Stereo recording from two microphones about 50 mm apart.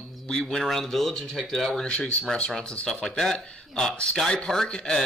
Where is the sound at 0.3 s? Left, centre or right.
Centre.